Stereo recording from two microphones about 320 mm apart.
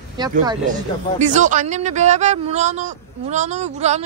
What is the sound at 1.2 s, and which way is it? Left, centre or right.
A man's voice, right.